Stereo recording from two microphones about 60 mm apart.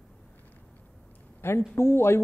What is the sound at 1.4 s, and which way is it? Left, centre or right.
Speech, left.